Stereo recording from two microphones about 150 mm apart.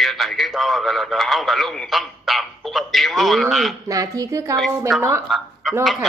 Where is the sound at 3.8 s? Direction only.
20° right (ahead or behind).